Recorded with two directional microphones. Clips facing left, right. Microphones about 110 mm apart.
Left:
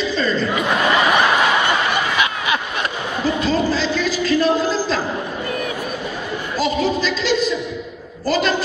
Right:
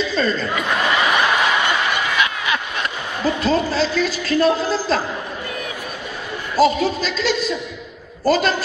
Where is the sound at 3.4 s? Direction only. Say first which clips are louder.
Right 2 dB; 45° right (ahead or behind).